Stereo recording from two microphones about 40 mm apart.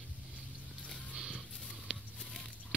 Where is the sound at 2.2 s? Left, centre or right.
Centre.